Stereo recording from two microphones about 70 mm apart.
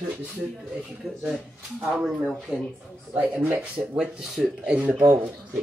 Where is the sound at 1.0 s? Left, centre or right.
Centre.